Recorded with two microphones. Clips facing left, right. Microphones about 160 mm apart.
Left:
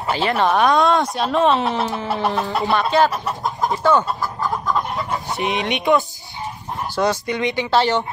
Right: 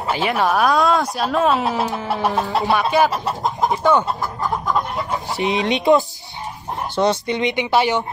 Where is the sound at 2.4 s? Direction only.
20° right (ahead or behind).